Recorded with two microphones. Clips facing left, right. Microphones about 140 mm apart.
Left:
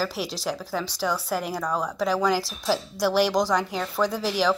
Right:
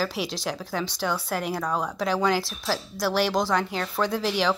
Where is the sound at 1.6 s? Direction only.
5° right (ahead or behind).